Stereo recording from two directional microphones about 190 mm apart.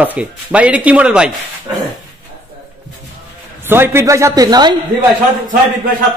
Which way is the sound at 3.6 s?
10° right (ahead or behind).